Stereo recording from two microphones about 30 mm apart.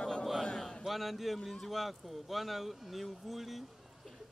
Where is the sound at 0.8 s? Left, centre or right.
Centre.